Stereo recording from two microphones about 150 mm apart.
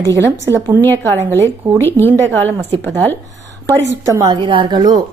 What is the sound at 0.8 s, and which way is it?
A woman's voice, 15° left (ahead or behind).